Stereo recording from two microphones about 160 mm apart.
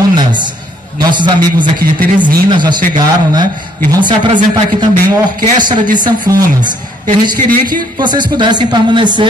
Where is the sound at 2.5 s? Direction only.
30° right (ahead or behind).